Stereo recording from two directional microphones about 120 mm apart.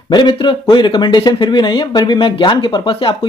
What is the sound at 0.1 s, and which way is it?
Speech, 40° left (ahead or behind).